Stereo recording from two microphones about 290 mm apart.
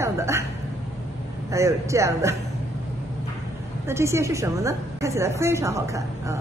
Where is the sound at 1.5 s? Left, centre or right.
Centre.